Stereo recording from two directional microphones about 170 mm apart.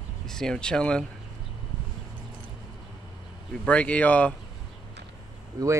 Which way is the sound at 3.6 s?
5° left (ahead or behind).